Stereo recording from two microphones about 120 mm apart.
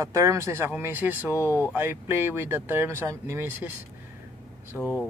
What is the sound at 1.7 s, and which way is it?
Speech, 20° right (ahead or behind).